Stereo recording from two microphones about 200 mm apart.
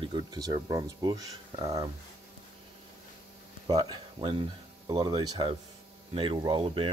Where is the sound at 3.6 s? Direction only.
20° right (ahead or behind).